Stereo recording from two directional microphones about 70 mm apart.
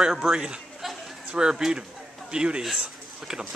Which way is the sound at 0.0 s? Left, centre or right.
Centre.